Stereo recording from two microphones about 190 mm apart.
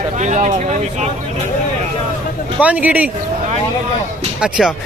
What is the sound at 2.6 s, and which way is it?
Speech, 10° right (ahead or behind).